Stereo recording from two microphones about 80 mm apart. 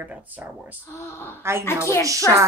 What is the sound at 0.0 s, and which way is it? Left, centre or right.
Speech, right.